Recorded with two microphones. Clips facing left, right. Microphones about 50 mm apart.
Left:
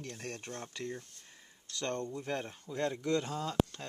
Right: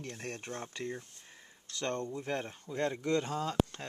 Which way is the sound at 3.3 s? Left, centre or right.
Right.